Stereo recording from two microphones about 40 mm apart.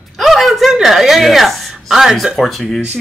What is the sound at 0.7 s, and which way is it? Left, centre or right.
A woman's voice, centre.